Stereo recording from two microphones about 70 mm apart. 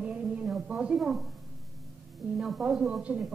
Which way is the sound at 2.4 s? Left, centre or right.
Centre.